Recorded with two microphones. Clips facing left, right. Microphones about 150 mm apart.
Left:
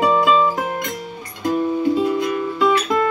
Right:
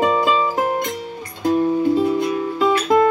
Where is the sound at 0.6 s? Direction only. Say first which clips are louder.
Right 3 dB; 35° right (ahead or behind).